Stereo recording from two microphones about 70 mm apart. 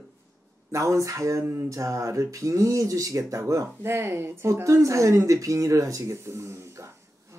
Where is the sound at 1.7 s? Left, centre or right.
Right.